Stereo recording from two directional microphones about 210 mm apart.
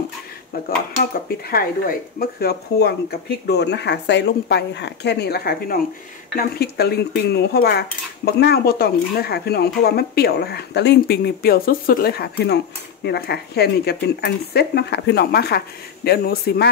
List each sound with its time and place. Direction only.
1.5 s speech: 45° left (ahead or behind)